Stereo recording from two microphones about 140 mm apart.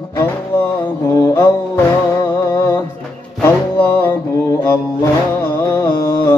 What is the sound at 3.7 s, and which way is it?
Music, 10° left (ahead or behind).